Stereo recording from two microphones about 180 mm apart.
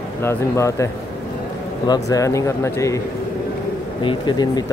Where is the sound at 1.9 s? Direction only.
20° left (ahead or behind).